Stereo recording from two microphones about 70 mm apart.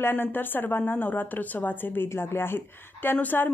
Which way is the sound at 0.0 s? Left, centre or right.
Left.